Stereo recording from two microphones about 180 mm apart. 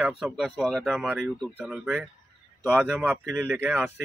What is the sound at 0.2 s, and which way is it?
Speech, centre (ahead or behind).